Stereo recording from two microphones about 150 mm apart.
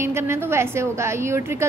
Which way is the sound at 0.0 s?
15° right (ahead or behind).